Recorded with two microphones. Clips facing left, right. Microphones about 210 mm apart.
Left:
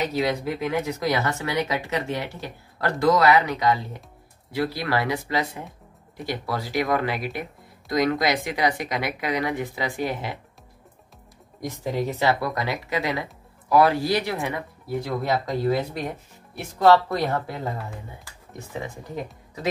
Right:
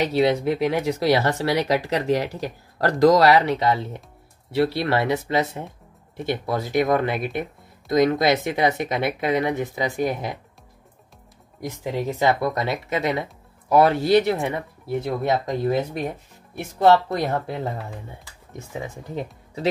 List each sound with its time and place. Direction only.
0.2 s speech: 30° right (ahead or behind)
12.2 s speech: 20° right (ahead or behind)
17.6 s speech: centre (ahead or behind)